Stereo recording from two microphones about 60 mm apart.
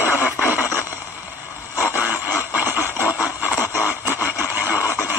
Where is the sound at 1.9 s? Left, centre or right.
Right.